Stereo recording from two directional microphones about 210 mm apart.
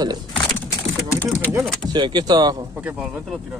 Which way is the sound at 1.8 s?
20° right (ahead or behind).